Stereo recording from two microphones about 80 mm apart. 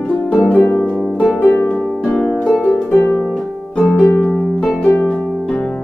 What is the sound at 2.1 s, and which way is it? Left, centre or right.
Harp, centre.